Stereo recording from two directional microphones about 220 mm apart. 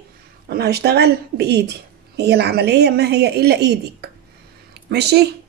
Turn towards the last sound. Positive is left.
turn(degrees=-50)  # may be behind; listen again after turning